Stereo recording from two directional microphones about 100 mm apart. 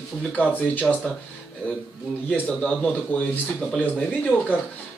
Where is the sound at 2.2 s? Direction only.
15° left (ahead or behind).